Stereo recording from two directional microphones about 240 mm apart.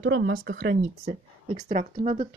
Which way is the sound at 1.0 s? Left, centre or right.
Right.